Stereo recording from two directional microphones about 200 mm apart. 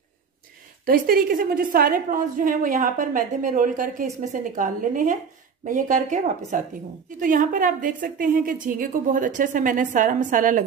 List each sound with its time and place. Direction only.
0.8 s a woman's voice: 45° right (ahead or behind)